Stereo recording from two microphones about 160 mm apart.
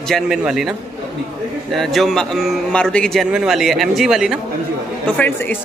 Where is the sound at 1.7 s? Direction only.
Centre (ahead or behind).